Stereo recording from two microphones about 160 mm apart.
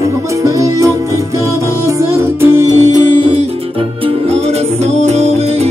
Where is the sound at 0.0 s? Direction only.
20° right (ahead or behind).